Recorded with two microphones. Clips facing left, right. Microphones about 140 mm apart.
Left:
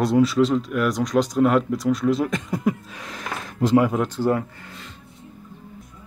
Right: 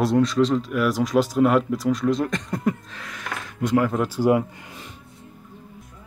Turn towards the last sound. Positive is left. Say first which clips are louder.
# right 2 dB
turn(degrees=-10)  # may be behind; listen again after turning